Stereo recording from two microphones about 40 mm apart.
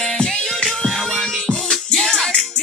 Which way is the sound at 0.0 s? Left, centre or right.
Centre.